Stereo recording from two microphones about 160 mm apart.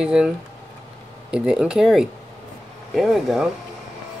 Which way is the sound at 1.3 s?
5° right (ahead or behind).